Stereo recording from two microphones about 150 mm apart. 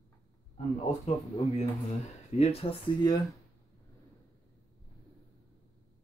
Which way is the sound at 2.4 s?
40° left (ahead or behind).